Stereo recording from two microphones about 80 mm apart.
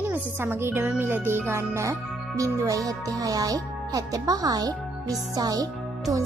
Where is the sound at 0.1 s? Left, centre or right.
Right.